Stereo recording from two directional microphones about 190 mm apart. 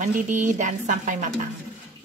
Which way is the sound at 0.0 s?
40° right (ahead or behind).